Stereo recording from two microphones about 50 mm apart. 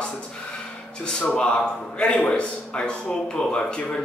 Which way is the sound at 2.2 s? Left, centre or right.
Left.